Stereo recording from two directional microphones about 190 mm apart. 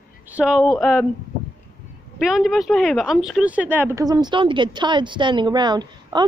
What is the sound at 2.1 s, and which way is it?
Speech, centre (ahead or behind).